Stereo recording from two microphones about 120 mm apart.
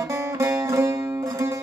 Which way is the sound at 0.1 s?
25° right (ahead or behind).